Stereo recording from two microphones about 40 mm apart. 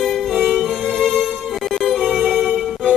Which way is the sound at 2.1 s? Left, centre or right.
Centre.